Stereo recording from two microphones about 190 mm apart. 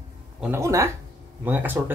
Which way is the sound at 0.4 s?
15° right (ahead or behind).